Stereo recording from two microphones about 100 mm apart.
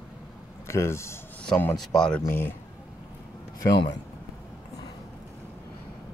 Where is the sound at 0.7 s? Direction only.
25° left (ahead or behind).